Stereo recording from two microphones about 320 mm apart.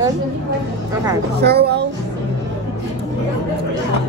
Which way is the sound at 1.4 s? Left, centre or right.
Right.